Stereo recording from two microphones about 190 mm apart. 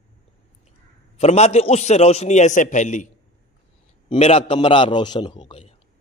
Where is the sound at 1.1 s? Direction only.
35° left (ahead or behind).